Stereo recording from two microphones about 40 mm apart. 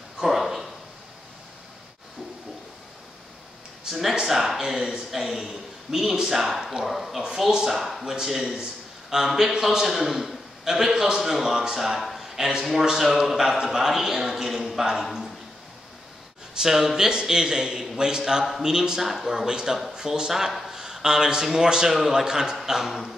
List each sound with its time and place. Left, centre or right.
0.2 s a sound: centre
4.1 s a man's voice: centre
8.0 s a man's voice: centre
16.5 s a man's voice: centre